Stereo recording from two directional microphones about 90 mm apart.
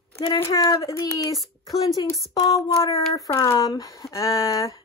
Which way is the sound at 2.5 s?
35° left (ahead or behind).